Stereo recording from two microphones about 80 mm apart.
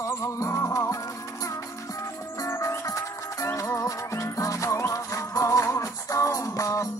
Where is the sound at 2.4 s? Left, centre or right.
Left.